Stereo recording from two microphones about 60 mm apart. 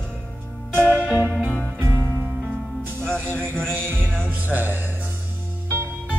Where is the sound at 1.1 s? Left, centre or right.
Right.